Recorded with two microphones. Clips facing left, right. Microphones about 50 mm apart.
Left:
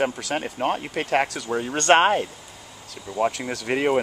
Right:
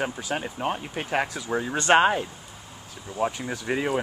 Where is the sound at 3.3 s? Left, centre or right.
Left.